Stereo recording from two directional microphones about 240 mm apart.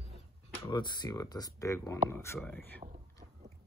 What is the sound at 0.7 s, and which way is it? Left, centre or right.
Speech, centre.